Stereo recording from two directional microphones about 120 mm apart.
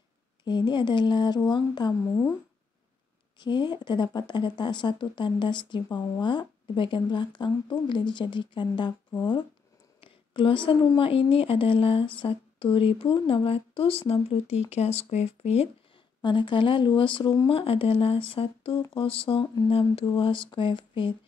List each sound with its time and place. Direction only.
0.5 s speech: 40° left (ahead or behind)
3.3 s speech: 40° left (ahead or behind)
9.9 s a sound: 45° left (ahead or behind)
11.0 s speech: 50° left (ahead or behind)
16.2 s speech: 40° left (ahead or behind)